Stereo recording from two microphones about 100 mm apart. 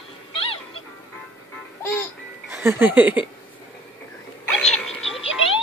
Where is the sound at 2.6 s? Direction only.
20° right (ahead or behind).